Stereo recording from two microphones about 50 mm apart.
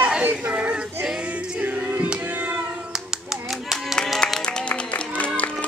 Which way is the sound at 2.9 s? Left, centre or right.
Centre.